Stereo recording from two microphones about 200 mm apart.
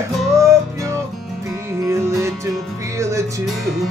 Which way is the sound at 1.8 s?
15° right (ahead or behind).